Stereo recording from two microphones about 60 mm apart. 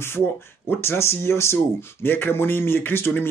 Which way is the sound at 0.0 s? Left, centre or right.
Left.